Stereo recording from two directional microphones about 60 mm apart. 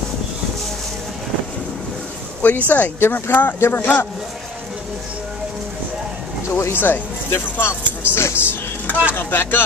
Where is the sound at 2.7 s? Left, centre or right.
Left.